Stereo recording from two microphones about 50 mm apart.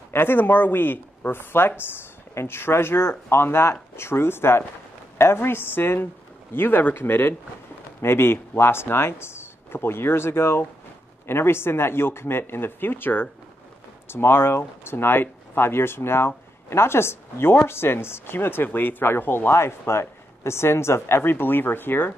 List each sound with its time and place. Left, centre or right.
0.1 s speech: left